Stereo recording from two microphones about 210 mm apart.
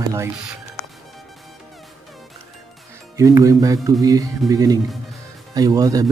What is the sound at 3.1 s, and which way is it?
Speech, 15° right (ahead or behind).